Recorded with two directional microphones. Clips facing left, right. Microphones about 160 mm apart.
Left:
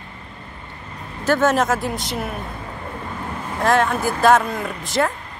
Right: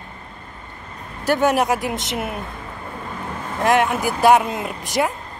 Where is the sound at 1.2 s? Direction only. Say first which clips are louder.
Even; 15° right (ahead or behind).